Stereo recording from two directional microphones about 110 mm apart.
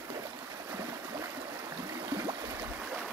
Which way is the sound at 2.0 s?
35° right (ahead or behind).